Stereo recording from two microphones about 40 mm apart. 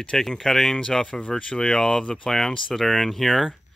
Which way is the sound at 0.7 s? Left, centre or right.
Centre.